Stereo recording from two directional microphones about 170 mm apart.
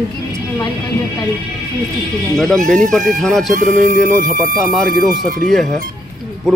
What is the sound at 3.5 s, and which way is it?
Music, 50° right (ahead or behind).